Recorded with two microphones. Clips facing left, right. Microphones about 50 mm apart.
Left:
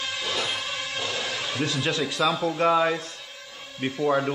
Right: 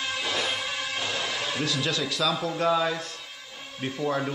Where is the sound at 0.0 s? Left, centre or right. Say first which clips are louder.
Even; centre.